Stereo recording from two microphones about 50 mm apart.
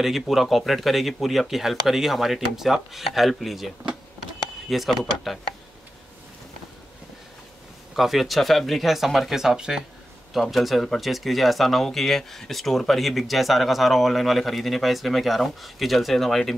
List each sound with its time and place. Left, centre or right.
0.0 s speech: centre
7.9 s speech: centre